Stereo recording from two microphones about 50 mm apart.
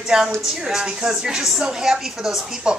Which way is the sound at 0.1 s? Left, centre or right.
Centre.